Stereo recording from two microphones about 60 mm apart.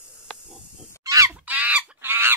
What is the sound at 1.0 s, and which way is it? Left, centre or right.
Crow, right.